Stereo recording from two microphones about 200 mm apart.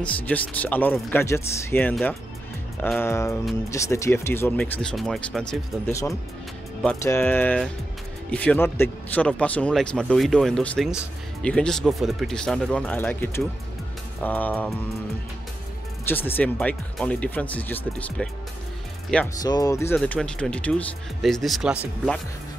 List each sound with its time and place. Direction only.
0.0 s speech: 5° left (ahead or behind)
7.0 s speech: 15° left (ahead or behind)
16.1 s speech: 10° left (ahead or behind)
19.4 s speech: 20° left (ahead or behind)
20.0 s speech: 5° left (ahead or behind)